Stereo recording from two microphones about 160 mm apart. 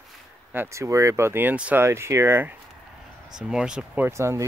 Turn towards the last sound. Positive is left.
turn(degrees=-15)  # may be behind; listen again after turning